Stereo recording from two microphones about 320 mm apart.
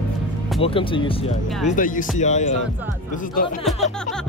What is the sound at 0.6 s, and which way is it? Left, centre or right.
Speech, centre.